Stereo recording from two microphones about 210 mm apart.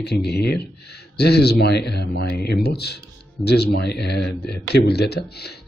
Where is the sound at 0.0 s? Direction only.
50° left (ahead or behind).